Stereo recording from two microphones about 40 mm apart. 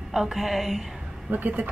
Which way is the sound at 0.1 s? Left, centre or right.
Centre.